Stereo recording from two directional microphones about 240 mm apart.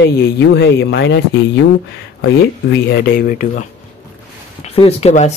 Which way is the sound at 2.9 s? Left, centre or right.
Left.